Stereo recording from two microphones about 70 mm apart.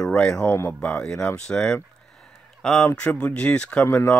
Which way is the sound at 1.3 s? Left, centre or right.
Centre.